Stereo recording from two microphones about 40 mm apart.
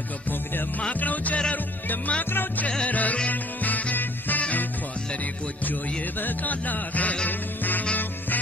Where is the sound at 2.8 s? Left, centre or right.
Left.